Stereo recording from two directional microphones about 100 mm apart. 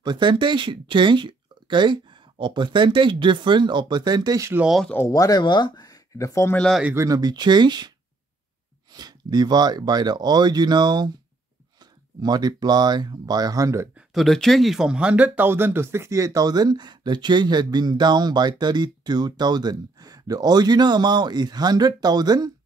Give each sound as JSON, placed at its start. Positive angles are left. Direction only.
{"t": 0.0, "sound": "speech", "side_deg": -50}
{"t": 4.6, "sound": "speech", "side_deg": -5}
{"t": 5.0, "sound": "speech", "side_deg": 35}
{"t": 7.0, "sound": "speech", "side_deg": -40}
{"t": 8.9, "sound": "speech", "side_deg": -45}
{"t": 14.1, "sound": "speech", "side_deg": 0}